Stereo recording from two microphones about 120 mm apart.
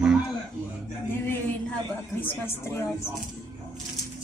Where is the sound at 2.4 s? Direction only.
25° left (ahead or behind).